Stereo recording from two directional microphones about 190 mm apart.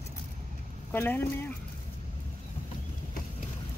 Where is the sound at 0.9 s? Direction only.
10° left (ahead or behind).